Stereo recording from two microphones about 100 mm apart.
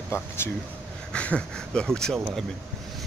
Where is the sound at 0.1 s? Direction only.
25° left (ahead or behind).